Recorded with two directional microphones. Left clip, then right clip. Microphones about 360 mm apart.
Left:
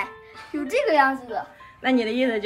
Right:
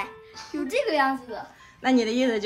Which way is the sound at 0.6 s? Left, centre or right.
Centre.